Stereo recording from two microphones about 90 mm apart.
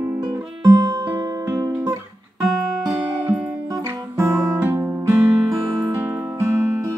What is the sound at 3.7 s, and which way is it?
Music, 30° right (ahead or behind).